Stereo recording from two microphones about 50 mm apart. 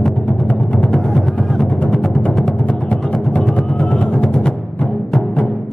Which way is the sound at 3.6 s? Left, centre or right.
Centre.